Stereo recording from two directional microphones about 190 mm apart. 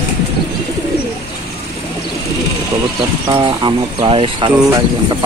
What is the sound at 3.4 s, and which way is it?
Speech, 25° right (ahead or behind).